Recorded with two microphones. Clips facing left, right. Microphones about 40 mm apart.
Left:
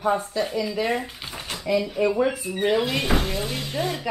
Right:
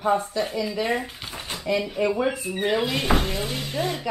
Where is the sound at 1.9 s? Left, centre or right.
Centre.